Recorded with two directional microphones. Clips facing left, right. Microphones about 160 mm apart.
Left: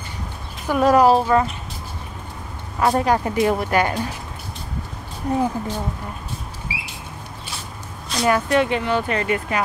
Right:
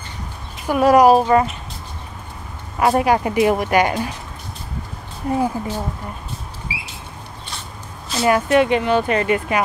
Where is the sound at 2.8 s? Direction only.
10° right (ahead or behind).